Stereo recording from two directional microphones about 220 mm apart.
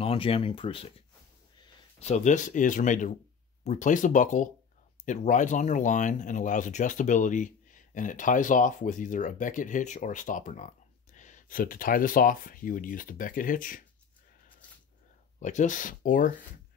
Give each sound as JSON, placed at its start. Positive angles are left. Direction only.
{"t": 0.0, "sound": "speech", "side_deg": 25}
{"t": 15.3, "sound": "speech", "side_deg": 35}